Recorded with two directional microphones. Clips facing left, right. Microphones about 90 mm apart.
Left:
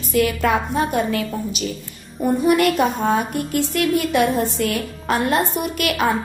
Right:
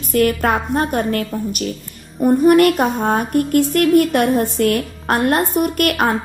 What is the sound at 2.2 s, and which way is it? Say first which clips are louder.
A woman's voice: right 5 dB; 55° right (ahead or behind).